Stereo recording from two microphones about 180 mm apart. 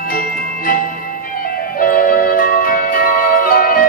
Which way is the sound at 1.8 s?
50° left (ahead or behind).